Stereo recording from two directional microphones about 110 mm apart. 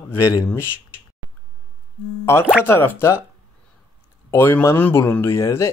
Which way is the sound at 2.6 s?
20° left (ahead or behind).